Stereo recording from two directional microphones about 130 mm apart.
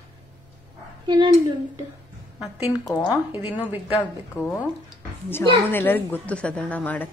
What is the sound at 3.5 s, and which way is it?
Speech, 15° right (ahead or behind).